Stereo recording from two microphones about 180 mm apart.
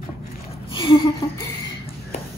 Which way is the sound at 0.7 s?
30° left (ahead or behind).